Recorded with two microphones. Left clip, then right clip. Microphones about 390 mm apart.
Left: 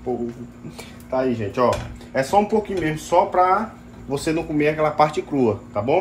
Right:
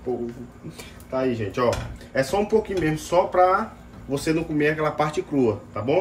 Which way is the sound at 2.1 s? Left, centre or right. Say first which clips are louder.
Left 3 dB; centre.